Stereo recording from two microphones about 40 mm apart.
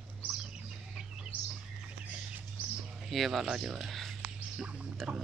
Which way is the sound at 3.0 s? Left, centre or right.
Centre.